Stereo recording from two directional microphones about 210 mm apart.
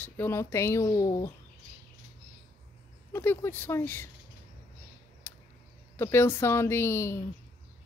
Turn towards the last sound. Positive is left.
turn(degrees=10)  # may be behind; listen again after turning